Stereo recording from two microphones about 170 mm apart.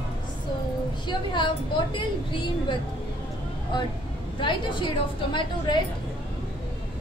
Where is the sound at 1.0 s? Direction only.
30° left (ahead or behind).